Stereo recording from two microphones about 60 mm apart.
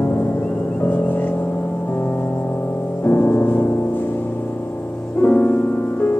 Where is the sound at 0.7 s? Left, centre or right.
Left.